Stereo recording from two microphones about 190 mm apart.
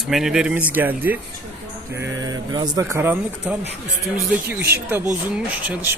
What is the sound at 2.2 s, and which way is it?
Speech, 20° right (ahead or behind).